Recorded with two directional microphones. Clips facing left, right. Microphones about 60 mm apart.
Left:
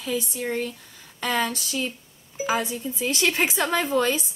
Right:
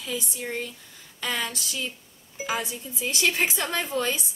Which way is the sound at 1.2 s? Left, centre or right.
Left.